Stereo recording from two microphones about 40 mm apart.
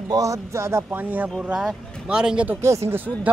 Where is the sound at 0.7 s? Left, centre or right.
Right.